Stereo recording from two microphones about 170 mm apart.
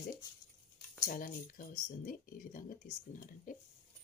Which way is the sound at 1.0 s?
55° left (ahead or behind).